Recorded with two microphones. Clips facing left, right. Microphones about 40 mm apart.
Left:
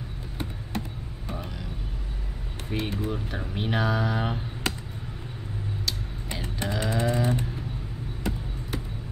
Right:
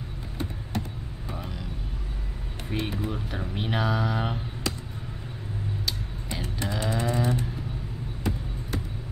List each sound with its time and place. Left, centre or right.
2.7 s speech: centre
6.4 s moo: left
6.9 s cattle: left